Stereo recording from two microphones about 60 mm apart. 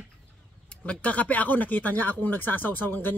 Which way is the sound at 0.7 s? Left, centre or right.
Left.